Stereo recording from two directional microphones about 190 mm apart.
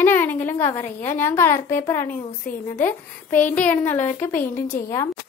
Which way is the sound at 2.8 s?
10° left (ahead or behind).